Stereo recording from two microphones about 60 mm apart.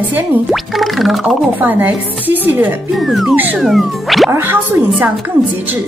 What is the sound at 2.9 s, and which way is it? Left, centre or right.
Speech, centre.